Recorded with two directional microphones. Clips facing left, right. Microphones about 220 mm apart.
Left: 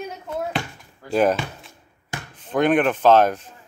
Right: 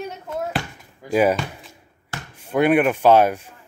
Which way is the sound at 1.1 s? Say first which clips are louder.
Right 1 dB; 10° right (ahead or behind).